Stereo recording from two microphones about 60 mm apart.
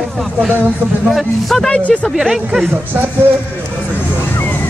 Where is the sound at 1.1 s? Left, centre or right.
Centre.